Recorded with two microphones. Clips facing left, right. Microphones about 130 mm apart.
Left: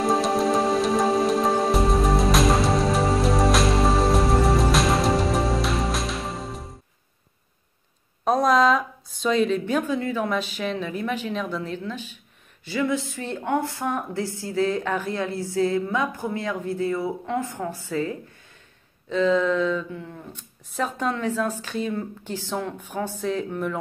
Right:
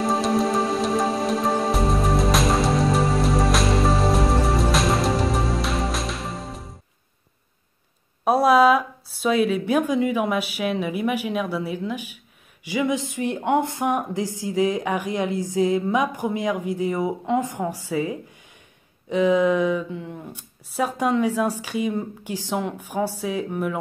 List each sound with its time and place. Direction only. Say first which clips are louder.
0.0 s music: even; centre (ahead or behind)
8.2 s a woman's voice: right 3 dB; 10° right (ahead or behind)